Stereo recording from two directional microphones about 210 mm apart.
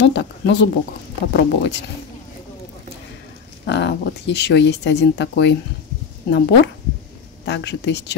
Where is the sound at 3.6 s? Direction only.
55° left (ahead or behind).